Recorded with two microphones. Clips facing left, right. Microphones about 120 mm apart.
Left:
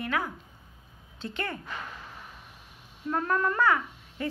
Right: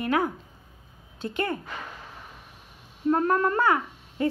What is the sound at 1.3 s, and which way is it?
Speech, 15° right (ahead or behind).